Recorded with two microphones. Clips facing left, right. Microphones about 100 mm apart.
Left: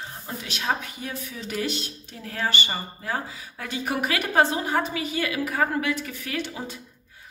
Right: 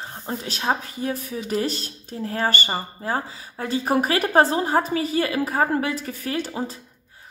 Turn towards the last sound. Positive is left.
turn(degrees=-35)  # may be behind; listen again after turning